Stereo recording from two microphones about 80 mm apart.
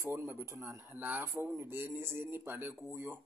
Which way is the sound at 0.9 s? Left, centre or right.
Right.